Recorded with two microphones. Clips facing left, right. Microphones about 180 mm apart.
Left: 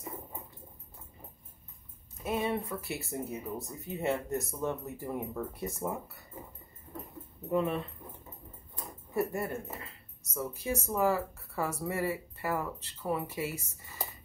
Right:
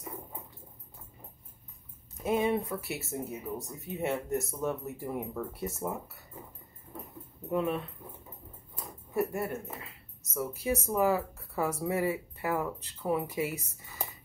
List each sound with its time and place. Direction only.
2.2 s speech: 15° right (ahead or behind)
2.9 s speech: centre (ahead or behind)
7.5 s speech: centre (ahead or behind)
9.1 s speech: centre (ahead or behind)